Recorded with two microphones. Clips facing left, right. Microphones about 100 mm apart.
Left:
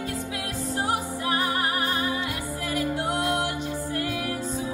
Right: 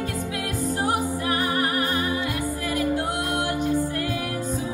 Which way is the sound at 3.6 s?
25° left (ahead or behind).